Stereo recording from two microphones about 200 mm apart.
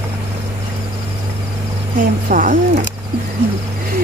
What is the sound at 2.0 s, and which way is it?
Speech, 40° right (ahead or behind).